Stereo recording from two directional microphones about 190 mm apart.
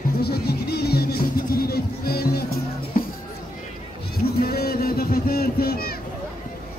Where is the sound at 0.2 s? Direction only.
55° left (ahead or behind).